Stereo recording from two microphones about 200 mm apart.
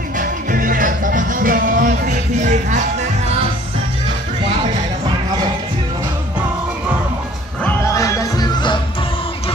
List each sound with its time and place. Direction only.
0.2 s music: 40° right (ahead or behind)
7.6 s music: 15° left (ahead or behind)